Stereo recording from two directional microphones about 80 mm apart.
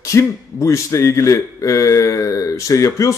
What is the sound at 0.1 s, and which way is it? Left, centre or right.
A man's voice, left.